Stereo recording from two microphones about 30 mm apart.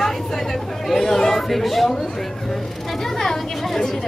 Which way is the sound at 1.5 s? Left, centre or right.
Centre.